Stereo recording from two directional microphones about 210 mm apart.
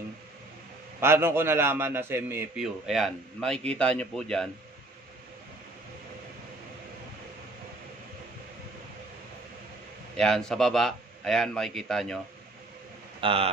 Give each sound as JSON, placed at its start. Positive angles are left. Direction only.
{"t": 1.0, "sound": "a man's voice", "side_deg": -10}
{"t": 10.1, "sound": "a man's voice", "side_deg": 0}
{"t": 13.2, "sound": "speech", "side_deg": -25}